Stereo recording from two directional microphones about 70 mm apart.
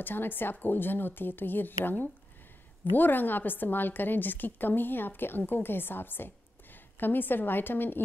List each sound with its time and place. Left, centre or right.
0.0 s a woman's voice: left
3.0 s a woman's voice: left